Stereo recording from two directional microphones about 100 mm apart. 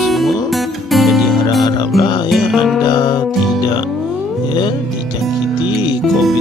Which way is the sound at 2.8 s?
50° left (ahead or behind).